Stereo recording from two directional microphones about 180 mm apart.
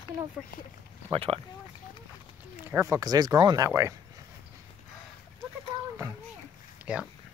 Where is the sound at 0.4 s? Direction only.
5° right (ahead or behind).